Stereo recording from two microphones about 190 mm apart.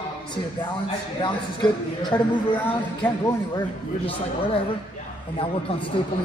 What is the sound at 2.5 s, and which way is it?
Speech, 10° left (ahead or behind).